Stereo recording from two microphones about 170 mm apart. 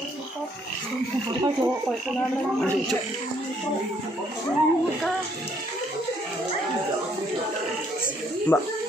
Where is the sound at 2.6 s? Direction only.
5° left (ahead or behind).